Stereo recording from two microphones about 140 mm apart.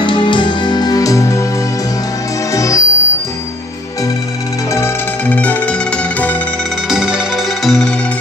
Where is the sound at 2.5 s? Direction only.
20° left (ahead or behind).